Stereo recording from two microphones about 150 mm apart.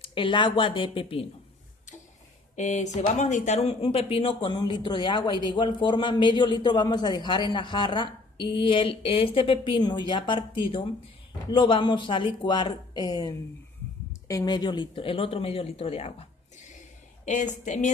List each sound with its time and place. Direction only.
0.0 s speech: 35° left (ahead or behind)
2.5 s speech: 50° left (ahead or behind)
17.2 s a woman's voice: 55° left (ahead or behind)